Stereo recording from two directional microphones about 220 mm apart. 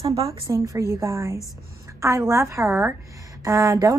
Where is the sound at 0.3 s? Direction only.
15° right (ahead or behind).